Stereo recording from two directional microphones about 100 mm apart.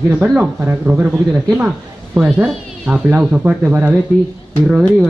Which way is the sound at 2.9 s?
25° right (ahead or behind).